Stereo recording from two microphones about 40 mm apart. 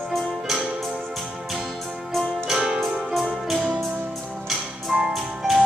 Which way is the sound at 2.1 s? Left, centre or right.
Centre.